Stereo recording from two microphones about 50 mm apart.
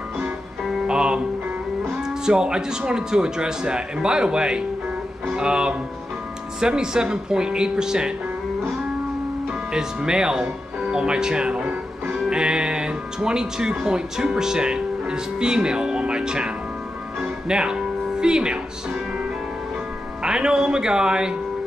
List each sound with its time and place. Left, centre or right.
0.7 s music: centre
2.0 s speech: centre
9.7 s speech: centre
17.2 s music: centre
20.2 s speech: centre